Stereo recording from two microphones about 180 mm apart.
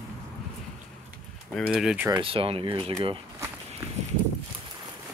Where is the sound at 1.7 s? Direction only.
5° right (ahead or behind).